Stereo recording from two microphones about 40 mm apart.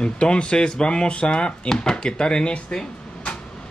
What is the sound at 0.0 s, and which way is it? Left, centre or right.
Speech, left.